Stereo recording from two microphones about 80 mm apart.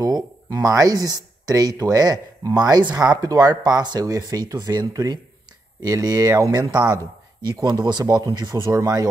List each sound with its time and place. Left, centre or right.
0.0 s speech: right
4.0 s speech: right
6.5 s speech: right
8.0 s speech: right